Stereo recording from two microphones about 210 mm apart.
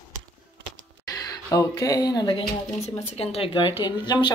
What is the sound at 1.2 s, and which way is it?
Speech, 20° left (ahead or behind).